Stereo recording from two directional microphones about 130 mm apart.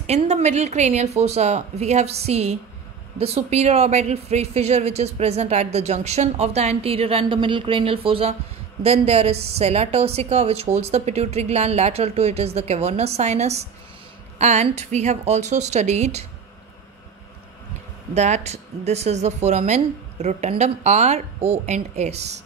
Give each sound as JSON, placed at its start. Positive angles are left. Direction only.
{"t": 0.0, "sound": "a woman's voice", "side_deg": -60}
{"t": 18.1, "sound": "speech", "side_deg": -60}